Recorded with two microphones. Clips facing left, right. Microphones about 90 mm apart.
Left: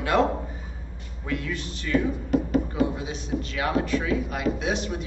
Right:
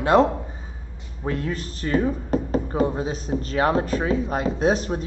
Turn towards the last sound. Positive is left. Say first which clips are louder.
# right 5 dB
turn(degrees=-40)  # may be behind; listen again after turning